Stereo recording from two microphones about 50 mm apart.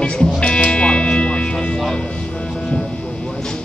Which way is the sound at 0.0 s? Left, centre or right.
Centre.